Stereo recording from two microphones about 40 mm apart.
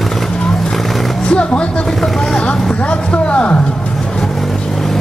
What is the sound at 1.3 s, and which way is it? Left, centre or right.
Music, left.